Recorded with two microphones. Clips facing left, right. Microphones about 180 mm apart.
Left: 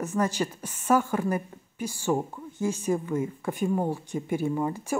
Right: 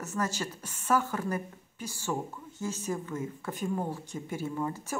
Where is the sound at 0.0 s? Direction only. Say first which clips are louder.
Left 6 dB; 15° left (ahead or behind).